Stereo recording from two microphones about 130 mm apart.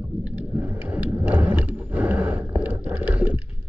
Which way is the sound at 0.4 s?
15° right (ahead or behind).